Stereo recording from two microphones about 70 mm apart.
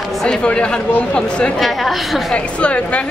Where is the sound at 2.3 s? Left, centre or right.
Centre.